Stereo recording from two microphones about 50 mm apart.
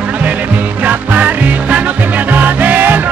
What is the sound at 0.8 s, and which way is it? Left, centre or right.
Music, right.